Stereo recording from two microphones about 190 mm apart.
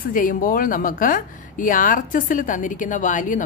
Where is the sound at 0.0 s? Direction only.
45° left (ahead or behind).